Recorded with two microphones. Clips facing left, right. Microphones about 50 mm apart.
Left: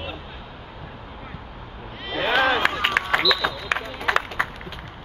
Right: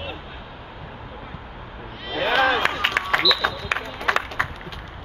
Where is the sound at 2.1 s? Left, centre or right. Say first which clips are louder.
Right 1 dB; centre.